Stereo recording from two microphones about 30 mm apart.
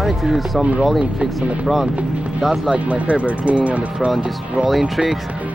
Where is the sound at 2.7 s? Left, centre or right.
Right.